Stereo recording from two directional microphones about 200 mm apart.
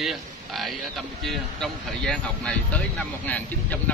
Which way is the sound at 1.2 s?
Centre (ahead or behind).